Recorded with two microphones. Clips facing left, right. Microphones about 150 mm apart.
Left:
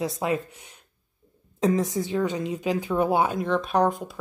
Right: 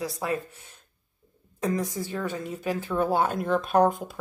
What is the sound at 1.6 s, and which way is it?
Speech, 20° left (ahead or behind).